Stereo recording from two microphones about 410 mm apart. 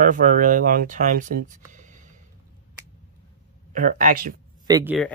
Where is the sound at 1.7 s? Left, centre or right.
Centre.